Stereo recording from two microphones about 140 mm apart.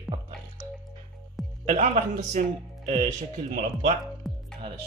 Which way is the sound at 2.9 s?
50° right (ahead or behind).